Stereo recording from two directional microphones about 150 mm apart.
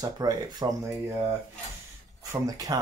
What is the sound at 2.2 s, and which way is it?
Speech, 25° right (ahead or behind).